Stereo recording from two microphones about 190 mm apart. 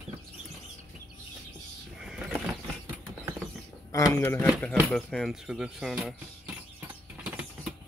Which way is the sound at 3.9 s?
15° left (ahead or behind).